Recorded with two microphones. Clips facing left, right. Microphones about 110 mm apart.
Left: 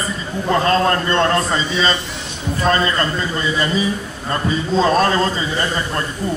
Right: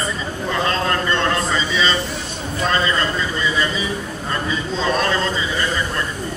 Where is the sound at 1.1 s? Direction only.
40° left (ahead or behind).